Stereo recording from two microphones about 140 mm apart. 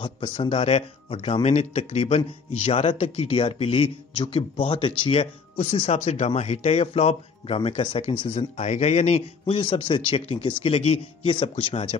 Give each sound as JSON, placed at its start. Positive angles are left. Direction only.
{"t": 0.0, "sound": "speech", "side_deg": 40}
{"t": 9.5, "sound": "speech", "side_deg": 35}